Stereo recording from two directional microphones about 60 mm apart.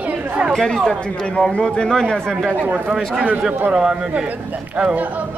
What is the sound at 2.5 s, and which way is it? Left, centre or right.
Speech, right.